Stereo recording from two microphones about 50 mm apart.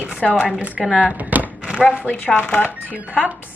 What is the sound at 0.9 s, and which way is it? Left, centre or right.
Speech, right.